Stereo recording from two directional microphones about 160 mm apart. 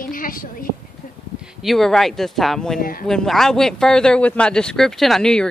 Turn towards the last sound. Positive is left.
turn(degrees=5)  # may be behind; listen again after turning